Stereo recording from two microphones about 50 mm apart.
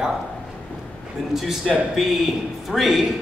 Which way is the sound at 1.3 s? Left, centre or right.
Centre.